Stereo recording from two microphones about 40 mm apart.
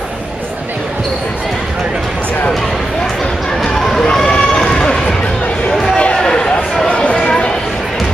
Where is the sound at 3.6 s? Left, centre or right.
Centre.